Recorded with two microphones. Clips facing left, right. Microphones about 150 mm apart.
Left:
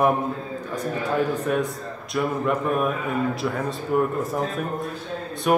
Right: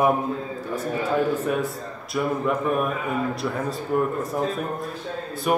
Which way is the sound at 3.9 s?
5° left (ahead or behind).